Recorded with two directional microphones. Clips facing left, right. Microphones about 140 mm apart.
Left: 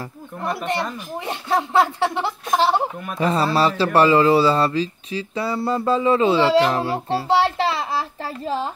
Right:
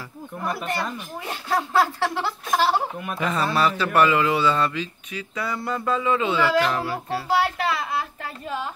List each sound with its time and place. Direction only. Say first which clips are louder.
1.2 s speech: left 3 dB; 20° left (ahead or behind)
3.2 s speech: left 4 dB; 30° left (ahead or behind)